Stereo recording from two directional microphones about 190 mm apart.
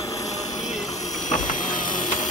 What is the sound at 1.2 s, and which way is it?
Vehicle, 40° left (ahead or behind).